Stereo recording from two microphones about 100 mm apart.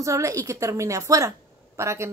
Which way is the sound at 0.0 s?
30° right (ahead or behind).